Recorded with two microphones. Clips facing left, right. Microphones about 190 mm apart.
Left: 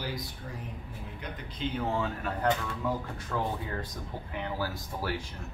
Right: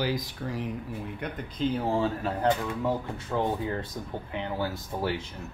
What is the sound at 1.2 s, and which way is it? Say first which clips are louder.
Speech: right 5 dB; 60° right (ahead or behind).